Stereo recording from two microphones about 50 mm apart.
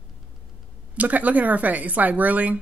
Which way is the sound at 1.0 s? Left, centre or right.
Right.